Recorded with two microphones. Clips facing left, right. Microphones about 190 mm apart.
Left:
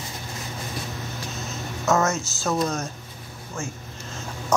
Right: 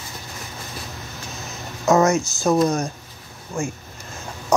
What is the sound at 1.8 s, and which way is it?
Speech, 15° right (ahead or behind).